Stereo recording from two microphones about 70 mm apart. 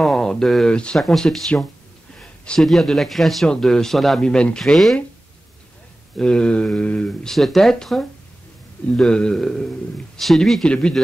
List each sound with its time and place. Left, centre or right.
0.0 s speech: centre
0.7 s mantra: centre
0.9 s a man's voice: centre
2.1 s a sound: centre
2.6 s a man's voice: centre
3.4 s mantra: centre
4.3 s mantra: centre
6.1 s mantra: centre
7.2 s a man's voice: centre
8.9 s mantra: centre
10.1 s a man's voice: centre
10.7 s mantra: centre